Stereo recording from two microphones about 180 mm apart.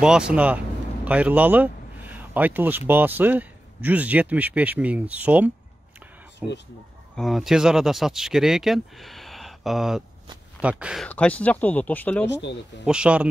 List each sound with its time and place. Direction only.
0.0 s a man's voice: 5° right (ahead or behind)
11.1 s speech: 5° left (ahead or behind)
12.3 s speech: 75° left (ahead or behind)
12.8 s speech: 5° right (ahead or behind)